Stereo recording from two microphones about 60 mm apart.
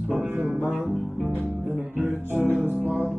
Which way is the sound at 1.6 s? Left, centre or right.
Right.